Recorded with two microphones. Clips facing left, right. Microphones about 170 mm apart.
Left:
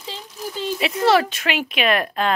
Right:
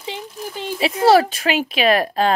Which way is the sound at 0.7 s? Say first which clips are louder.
Right 4 dB; 35° right (ahead or behind).